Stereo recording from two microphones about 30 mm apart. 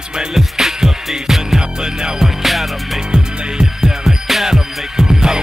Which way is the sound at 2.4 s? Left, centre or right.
Centre.